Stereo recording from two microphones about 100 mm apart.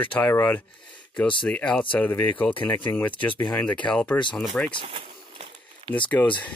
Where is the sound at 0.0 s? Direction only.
15° left (ahead or behind).